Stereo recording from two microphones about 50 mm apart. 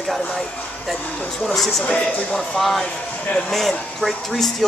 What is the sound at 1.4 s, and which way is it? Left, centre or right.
Speech, centre.